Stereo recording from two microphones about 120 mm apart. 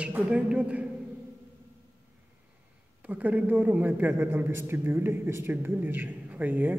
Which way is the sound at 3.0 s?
15° right (ahead or behind).